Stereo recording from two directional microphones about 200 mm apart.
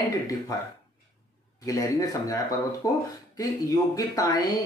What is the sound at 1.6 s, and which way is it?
Speech, 15° left (ahead or behind).